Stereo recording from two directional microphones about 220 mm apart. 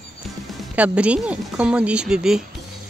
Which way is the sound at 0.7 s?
5° right (ahead or behind).